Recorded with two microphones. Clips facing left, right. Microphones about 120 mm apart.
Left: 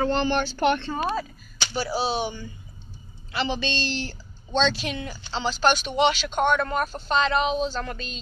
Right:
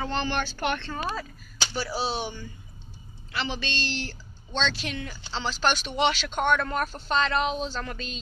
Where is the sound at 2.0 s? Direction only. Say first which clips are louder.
Left 4 dB; 5° left (ahead or behind).